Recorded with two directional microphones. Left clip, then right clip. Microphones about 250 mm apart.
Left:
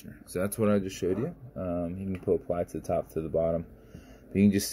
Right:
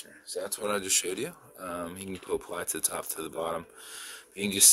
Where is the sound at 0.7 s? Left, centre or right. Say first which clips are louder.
Left 1 dB; centre.